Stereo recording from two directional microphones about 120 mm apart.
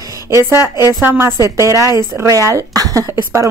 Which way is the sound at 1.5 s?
25° right (ahead or behind).